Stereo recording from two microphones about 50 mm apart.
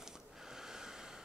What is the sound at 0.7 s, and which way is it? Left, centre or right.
Waves, centre.